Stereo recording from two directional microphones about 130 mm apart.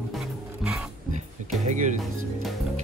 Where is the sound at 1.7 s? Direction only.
70° right (ahead or behind).